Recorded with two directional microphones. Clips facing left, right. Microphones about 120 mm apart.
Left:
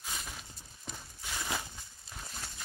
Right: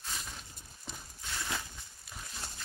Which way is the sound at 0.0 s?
Centre (ahead or behind).